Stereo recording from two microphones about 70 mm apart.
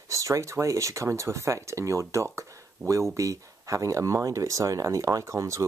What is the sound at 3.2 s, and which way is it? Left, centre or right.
Speech, right.